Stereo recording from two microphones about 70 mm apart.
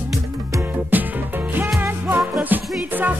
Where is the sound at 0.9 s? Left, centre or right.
Right.